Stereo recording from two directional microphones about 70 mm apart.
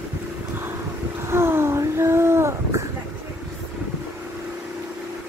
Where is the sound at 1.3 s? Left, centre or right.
Right.